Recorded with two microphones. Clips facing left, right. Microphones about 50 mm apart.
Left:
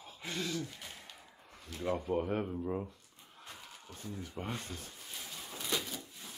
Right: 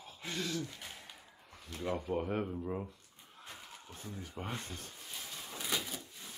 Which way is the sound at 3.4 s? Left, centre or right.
Centre.